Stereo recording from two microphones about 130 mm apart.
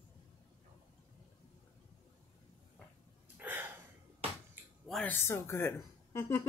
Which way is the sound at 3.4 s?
15° right (ahead or behind).